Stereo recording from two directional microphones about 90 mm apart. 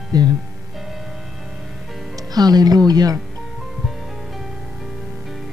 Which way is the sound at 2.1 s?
45° right (ahead or behind).